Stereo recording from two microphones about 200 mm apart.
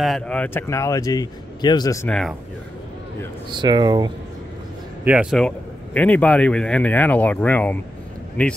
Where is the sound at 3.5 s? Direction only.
20° right (ahead or behind).